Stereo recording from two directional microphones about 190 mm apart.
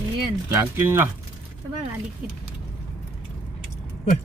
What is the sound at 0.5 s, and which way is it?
Speech, 10° right (ahead or behind).